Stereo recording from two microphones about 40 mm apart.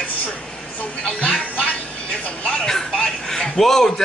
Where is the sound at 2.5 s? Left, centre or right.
Centre.